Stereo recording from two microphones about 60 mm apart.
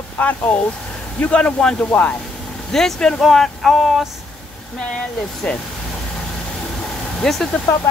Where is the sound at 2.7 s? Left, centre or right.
Centre.